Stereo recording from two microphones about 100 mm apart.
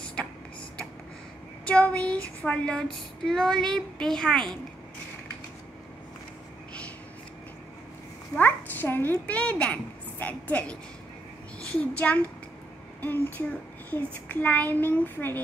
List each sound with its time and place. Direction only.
0.2 s a sound: 10° left (ahead or behind)
1.7 s child singing: 10° left (ahead or behind)
8.4 s a child's voice: 20° left (ahead or behind)